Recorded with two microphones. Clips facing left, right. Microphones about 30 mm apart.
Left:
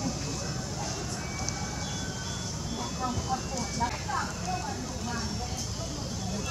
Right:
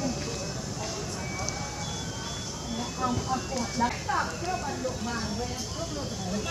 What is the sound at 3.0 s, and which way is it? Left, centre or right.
Vehicle, centre.